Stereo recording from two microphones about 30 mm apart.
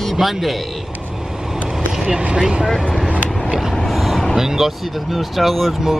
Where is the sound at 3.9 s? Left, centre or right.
Centre.